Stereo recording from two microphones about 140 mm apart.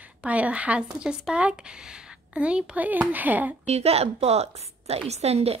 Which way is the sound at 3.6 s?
50° right (ahead or behind).